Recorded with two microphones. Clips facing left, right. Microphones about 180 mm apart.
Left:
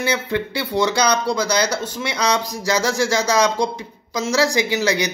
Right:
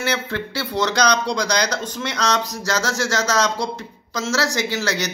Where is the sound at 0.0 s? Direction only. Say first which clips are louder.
Left 3 dB; 15° left (ahead or behind).